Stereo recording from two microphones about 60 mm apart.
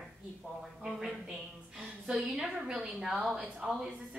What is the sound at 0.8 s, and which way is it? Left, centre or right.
Speech, centre.